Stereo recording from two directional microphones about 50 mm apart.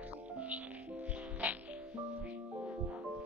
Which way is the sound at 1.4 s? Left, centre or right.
Right.